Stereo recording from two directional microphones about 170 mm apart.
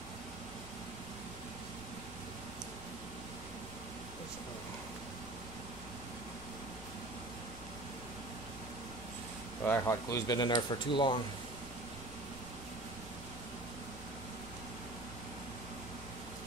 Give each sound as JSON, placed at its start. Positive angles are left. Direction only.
{"t": 9.7, "sound": "speech", "side_deg": 20}